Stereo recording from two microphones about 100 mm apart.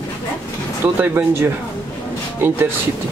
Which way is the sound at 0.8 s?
20° right (ahead or behind).